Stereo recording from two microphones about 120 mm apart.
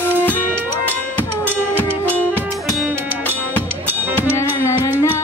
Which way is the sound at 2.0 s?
15° right (ahead or behind).